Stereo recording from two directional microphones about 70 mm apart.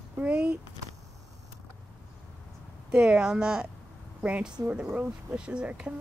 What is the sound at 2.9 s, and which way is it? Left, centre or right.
Speech, centre.